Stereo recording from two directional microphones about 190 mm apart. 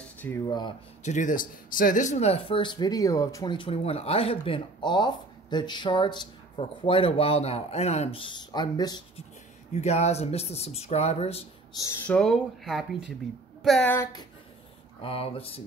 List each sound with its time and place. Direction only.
0.0 s a sound: 10° left (ahead or behind)
0.5 s speech: 20° left (ahead or behind)
1.0 s speech: 40° left (ahead or behind); by 9.0 s 20° left (ahead or behind)
9.8 s speech: 35° left (ahead or behind)
11.7 s speech: 20° left (ahead or behind)
12.1 s speech: centre (ahead or behind)
15.0 s speech: 30° left (ahead or behind)